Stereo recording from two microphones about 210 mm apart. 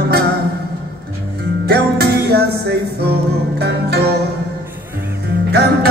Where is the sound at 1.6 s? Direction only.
50° right (ahead or behind).